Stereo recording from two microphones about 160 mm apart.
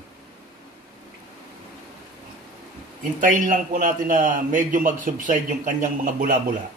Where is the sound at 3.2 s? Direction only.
55° right (ahead or behind).